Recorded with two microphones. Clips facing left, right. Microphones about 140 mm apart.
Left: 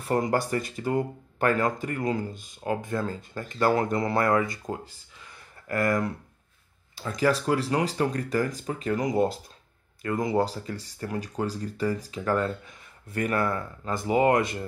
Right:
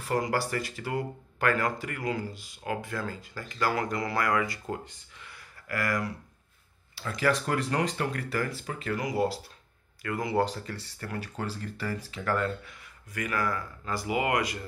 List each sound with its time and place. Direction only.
0.0 s speech: 25° left (ahead or behind)
7.8 s speech: 35° left (ahead or behind)
8.1 s speech: 20° left (ahead or behind)